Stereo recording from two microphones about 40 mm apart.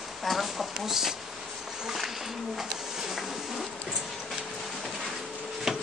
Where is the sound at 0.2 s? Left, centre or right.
Centre.